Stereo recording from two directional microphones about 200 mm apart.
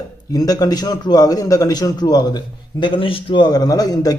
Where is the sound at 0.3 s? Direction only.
20° left (ahead or behind).